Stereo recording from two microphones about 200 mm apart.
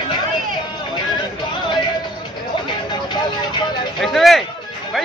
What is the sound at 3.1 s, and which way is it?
Vehicle, 20° left (ahead or behind).